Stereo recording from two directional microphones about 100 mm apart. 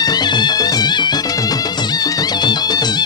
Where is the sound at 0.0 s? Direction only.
45° left (ahead or behind).